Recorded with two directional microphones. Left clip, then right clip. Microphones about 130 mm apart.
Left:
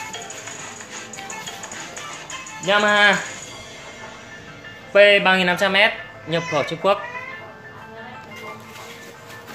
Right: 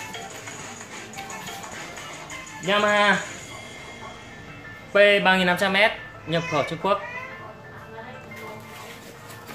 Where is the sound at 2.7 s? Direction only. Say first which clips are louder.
Left 4 dB; 70° left (ahead or behind).